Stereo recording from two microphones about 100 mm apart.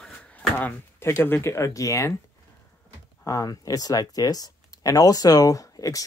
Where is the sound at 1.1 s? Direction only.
30° left (ahead or behind).